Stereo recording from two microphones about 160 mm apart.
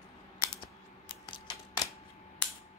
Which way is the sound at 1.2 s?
30° left (ahead or behind).